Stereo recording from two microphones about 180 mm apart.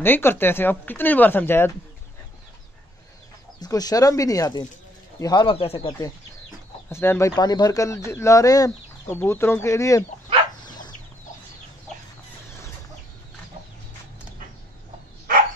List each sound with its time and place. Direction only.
0.0 s speech: 10° left (ahead or behind)
3.5 s speech: 20° left (ahead or behind)
6.9 s speech: 15° left (ahead or behind)
10.6 s dog: 25° left (ahead or behind)